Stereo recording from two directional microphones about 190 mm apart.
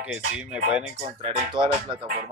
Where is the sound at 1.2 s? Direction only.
30° right (ahead or behind).